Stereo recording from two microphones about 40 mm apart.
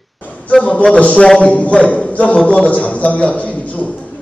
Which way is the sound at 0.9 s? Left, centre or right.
Left.